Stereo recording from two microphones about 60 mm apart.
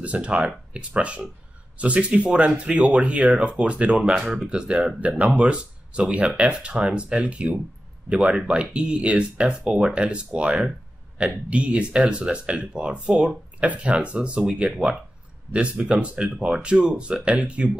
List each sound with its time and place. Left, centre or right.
0.0 s speech: right